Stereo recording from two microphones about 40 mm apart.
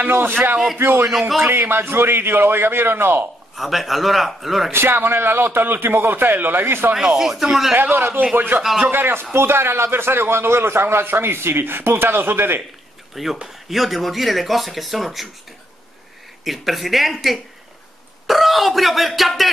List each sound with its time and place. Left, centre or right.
0.1 s a man's voice: right
0.7 s a man's voice: right
1.4 s a man's voice: right
3.5 s speech: centre
4.7 s a man's voice: right
7.2 s speech: centre
7.7 s a man's voice: right
8.9 s a man's voice: right
9.3 s a man's voice: right
13.1 s speech: centre
16.4 s speech: centre